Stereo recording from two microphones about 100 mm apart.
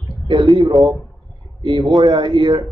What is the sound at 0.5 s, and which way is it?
Speech, 40° right (ahead or behind).